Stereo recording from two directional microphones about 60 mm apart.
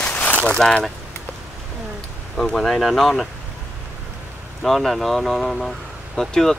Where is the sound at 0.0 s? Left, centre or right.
Left.